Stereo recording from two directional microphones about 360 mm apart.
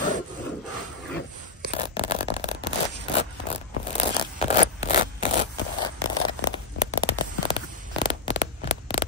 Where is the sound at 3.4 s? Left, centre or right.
Centre.